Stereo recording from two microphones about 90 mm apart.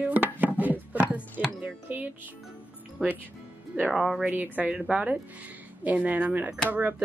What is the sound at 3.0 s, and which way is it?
Speech, 5° left (ahead or behind).